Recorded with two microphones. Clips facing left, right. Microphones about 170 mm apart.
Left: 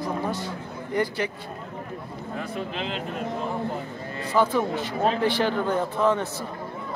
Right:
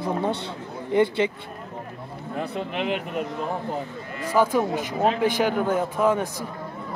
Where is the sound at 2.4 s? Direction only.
65° right (ahead or behind).